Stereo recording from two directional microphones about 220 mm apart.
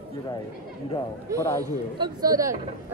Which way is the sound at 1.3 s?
15° left (ahead or behind).